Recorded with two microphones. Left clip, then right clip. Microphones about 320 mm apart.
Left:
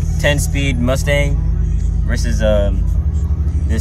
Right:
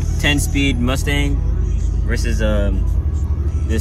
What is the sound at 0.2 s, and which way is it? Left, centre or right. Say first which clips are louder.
Speech: left 1 dB; centre.